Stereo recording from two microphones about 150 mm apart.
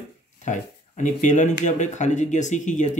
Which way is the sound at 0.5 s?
55° left (ahead or behind).